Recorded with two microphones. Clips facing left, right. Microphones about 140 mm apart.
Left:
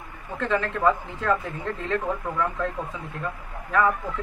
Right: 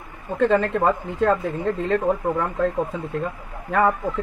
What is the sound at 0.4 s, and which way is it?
Speech, 55° right (ahead or behind).